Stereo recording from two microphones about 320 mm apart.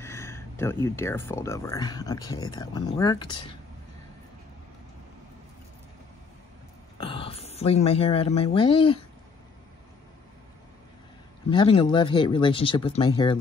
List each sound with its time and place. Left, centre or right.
0.0 s speech: centre
7.0 s speech: centre
11.5 s speech: centre